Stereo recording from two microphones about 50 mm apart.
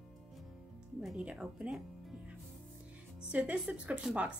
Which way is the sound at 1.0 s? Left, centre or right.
Centre.